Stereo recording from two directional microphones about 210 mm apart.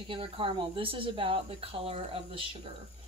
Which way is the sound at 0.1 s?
25° right (ahead or behind).